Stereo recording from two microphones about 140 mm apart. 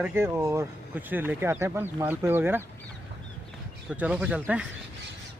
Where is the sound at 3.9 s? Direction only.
10° right (ahead or behind).